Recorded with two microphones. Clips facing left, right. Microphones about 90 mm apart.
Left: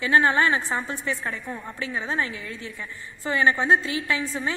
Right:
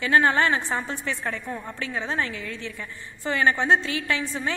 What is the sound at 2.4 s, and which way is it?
Speech, 65° right (ahead or behind).